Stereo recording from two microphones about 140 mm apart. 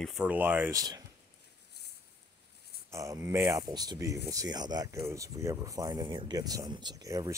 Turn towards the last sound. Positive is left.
turn(degrees=-25)  # may be behind; listen again after turning